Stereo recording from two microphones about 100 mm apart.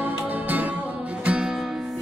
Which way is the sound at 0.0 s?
15° right (ahead or behind).